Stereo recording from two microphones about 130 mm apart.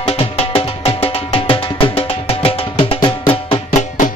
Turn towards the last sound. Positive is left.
turn(degrees=75)  # may be behind; listen again after turning